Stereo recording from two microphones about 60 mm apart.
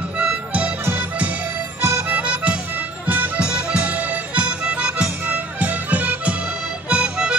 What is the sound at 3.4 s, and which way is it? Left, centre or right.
Music, centre.